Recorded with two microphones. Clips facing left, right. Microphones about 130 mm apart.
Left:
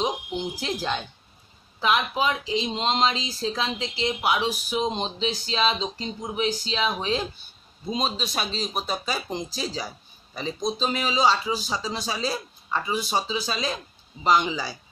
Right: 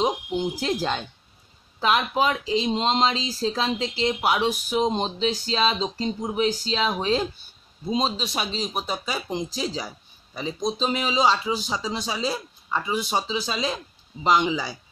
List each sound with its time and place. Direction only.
0.6 s speech: 40° right (ahead or behind)
7.9 s speech: 25° right (ahead or behind)